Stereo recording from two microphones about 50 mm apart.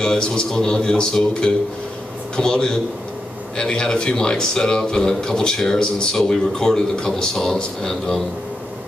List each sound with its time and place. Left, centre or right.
0.0 s a man's voice: centre